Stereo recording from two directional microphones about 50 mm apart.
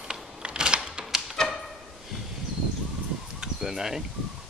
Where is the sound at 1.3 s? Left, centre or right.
Centre.